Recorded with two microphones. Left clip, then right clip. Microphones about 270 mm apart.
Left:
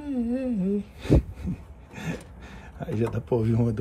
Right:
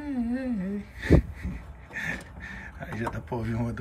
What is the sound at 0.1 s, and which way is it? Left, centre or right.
Humming, centre.